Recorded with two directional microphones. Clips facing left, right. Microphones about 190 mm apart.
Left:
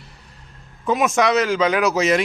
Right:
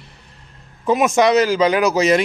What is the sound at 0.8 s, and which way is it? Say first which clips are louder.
Speech: right 3 dB; centre (ahead or behind).